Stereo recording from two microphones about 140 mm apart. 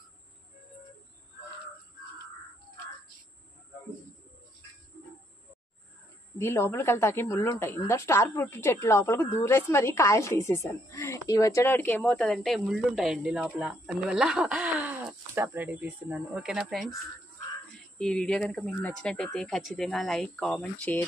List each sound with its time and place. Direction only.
6.3 s a woman's voice: 20° left (ahead or behind); by 16.8 s 5° right (ahead or behind)
17.9 s speech: 5° left (ahead or behind)